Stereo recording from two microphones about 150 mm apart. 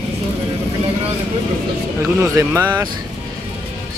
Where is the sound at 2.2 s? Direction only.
15° right (ahead or behind).